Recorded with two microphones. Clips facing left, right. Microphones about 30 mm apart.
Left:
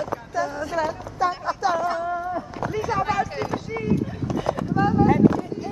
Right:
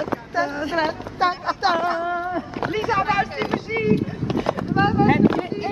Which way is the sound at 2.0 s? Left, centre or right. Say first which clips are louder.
Right 2 dB; right.